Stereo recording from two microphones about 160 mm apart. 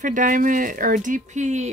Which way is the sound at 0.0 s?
55° right (ahead or behind).